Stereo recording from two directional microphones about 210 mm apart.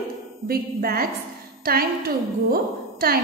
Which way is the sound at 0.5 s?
45° right (ahead or behind).